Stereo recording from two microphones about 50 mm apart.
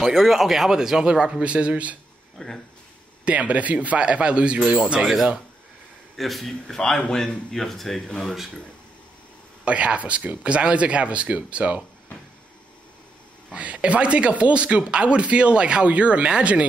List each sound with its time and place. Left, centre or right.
0.0 s speech: centre; by 2.0 s right
2.3 s speech: centre
3.3 s speech: right
5.0 s a man's voice: centre
9.7 s speech: right
13.5 s speech: right